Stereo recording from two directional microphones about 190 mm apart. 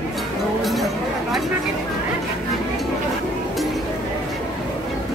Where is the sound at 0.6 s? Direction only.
Centre (ahead or behind).